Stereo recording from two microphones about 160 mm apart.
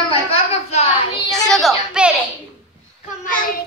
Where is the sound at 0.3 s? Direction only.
40° left (ahead or behind).